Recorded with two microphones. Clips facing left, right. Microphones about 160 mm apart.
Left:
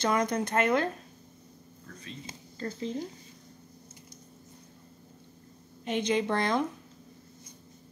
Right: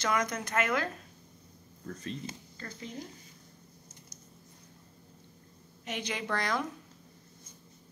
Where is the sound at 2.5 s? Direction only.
30° left (ahead or behind).